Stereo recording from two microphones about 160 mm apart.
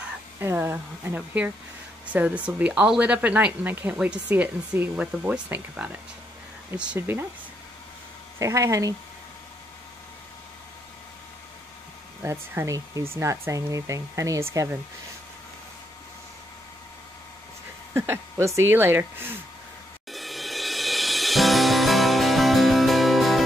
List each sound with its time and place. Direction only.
0.4 s speech: 15° right (ahead or behind)
8.4 s speech: 20° right (ahead or behind)
12.2 s speech: 15° right (ahead or behind)
17.9 s speech: 15° right (ahead or behind)
20.1 s music: centre (ahead or behind)